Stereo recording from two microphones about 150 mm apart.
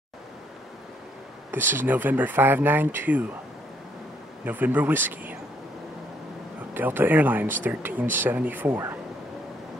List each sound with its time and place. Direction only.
1.7 s speech: 15° right (ahead or behind)
4.5 s speech: 10° right (ahead or behind)
6.7 s speech: 15° right (ahead or behind)